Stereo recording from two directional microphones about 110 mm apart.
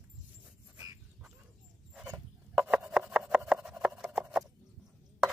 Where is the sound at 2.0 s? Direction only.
10° right (ahead or behind).